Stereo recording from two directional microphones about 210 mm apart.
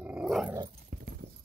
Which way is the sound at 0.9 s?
45° right (ahead or behind).